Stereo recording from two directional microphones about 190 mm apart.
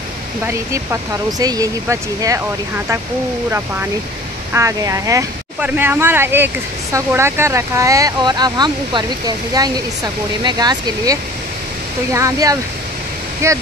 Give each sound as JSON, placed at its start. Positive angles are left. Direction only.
{"t": 1.4, "sound": "speech", "side_deg": -20}
{"t": 4.6, "sound": "speech", "side_deg": -15}